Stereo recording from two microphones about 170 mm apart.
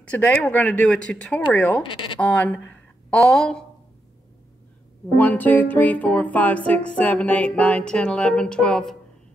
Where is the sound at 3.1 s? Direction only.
5° left (ahead or behind).